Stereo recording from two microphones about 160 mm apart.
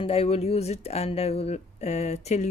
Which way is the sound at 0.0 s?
40° left (ahead or behind).